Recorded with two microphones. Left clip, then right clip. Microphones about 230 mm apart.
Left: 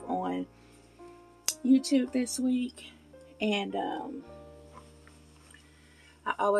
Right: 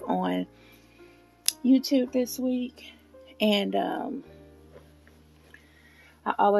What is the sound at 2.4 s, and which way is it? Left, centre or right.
Speech, centre.